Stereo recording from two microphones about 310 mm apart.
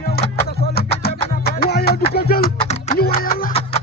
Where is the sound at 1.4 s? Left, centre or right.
Left.